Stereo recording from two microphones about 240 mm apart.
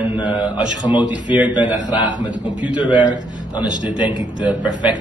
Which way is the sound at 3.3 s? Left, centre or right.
Right.